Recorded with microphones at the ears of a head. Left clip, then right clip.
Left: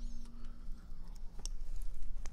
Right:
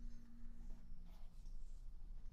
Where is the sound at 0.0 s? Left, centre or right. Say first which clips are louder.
Left 8 dB; left.